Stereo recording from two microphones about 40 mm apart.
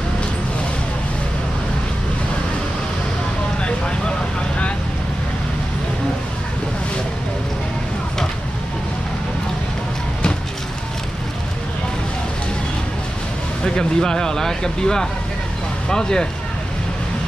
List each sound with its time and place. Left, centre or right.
13.7 s speech: centre